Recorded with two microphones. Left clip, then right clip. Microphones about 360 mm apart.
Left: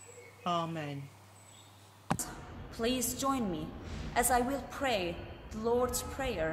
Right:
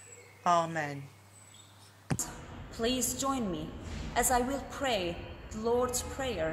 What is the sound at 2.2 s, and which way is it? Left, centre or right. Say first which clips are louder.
A woman's voice: right 2 dB; centre.